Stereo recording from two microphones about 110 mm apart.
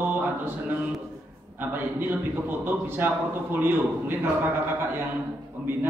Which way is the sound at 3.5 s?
20° right (ahead or behind).